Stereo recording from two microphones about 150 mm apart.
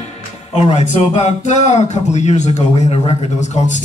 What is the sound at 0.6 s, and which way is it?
Speech, 50° left (ahead or behind).